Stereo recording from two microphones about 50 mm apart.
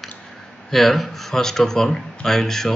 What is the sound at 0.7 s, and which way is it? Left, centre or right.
Speech, centre.